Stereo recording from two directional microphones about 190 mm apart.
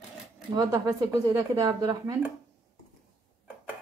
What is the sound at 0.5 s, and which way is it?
Speech, 20° right (ahead or behind).